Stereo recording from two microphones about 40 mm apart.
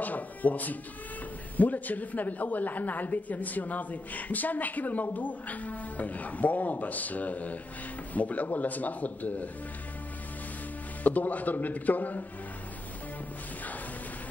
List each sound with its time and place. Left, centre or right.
0.0 s music: left
1.6 s a woman's voice: left
11.1 s a woman's voice: left